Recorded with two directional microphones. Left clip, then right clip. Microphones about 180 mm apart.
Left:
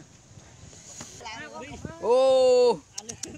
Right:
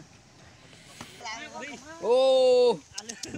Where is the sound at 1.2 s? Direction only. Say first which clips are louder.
Right 1 dB; 30° right (ahead or behind).